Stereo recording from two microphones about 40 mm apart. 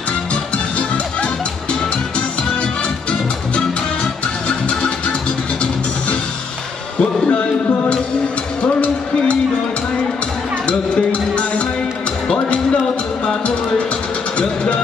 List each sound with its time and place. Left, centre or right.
0.3 s music: left
7.0 s music: left
8.6 s music: left
10.7 s music: left
14.4 s speech: left